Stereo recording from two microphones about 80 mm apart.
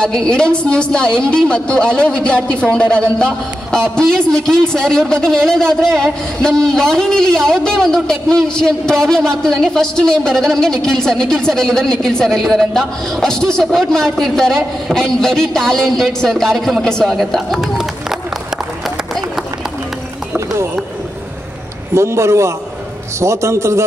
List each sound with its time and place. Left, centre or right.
0.0 s a woman's voice: centre
21.9 s a man's voice: right